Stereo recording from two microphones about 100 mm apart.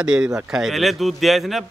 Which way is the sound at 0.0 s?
10° right (ahead or behind).